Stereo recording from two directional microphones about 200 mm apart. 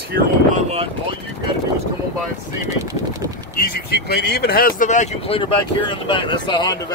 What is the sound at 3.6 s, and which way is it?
Speech, 50° left (ahead or behind).